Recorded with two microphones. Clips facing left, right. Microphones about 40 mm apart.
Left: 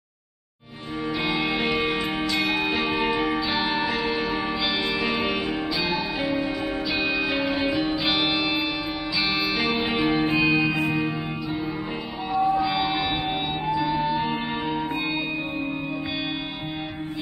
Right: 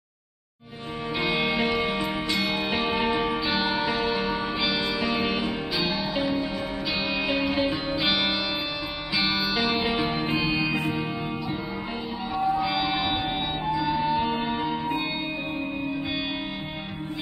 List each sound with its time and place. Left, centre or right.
1.5 s music: left
10.7 s music: centre